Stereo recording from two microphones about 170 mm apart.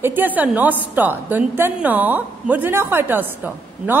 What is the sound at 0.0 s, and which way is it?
A woman's voice, 10° right (ahead or behind).